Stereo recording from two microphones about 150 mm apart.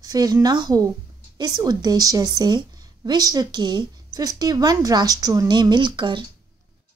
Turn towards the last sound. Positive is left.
turn(degrees=-30)  # may be behind; listen again after turning